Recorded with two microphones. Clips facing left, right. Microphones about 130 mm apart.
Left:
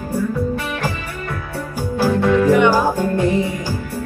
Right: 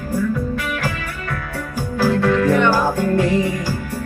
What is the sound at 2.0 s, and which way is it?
Music, 15° left (ahead or behind).